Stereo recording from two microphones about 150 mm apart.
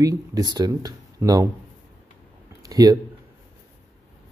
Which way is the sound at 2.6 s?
25° right (ahead or behind).